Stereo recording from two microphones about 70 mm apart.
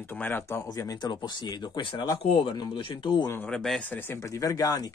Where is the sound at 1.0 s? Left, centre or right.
Left.